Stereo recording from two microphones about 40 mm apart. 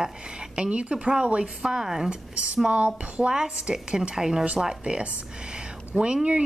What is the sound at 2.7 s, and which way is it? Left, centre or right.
Speech, right.